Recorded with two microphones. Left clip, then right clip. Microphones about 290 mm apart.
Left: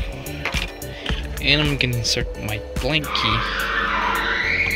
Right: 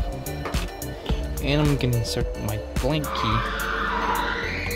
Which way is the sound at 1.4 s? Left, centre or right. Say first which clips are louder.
Left 6 dB; centre.